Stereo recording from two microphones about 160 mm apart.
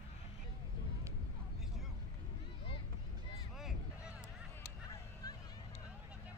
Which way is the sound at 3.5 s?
5° right (ahead or behind).